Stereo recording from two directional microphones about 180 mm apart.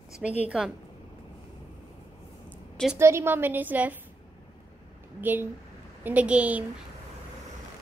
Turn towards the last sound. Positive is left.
turn(degrees=-5)  # may be behind; listen again after turning